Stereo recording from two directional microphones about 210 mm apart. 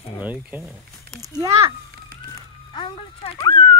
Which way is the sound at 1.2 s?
15° right (ahead or behind).